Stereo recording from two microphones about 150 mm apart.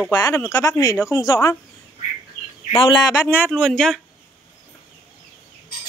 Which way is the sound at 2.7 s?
35° left (ahead or behind).